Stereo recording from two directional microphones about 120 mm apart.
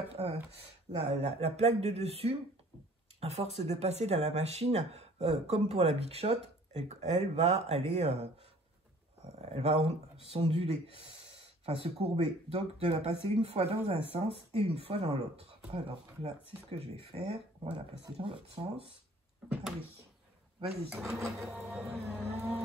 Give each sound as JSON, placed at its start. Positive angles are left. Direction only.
{"t": 0.1, "sound": "speech", "side_deg": -55}
{"t": 9.3, "sound": "speech", "side_deg": -60}
{"t": 20.9, "sound": "vehicle", "side_deg": -5}
{"t": 21.2, "sound": "printer", "side_deg": -25}
{"t": 22.1, "sound": "vehicle", "side_deg": -15}